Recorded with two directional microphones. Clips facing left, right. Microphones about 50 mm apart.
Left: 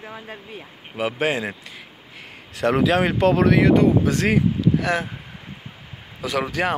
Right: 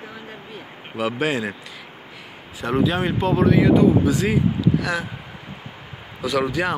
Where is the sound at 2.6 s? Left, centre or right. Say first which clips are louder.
Left 3 dB; left.